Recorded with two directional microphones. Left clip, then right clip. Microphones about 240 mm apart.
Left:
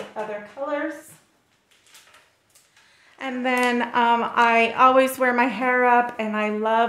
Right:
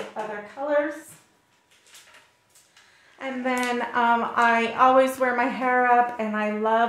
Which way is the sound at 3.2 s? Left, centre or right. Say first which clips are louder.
Left 4 dB; left.